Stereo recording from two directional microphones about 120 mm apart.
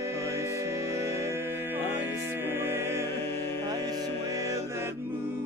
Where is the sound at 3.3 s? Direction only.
20° left (ahead or behind).